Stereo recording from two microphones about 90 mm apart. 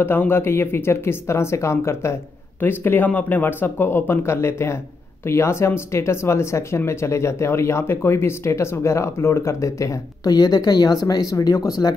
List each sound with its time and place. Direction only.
0.0 s speech: 25° left (ahead or behind)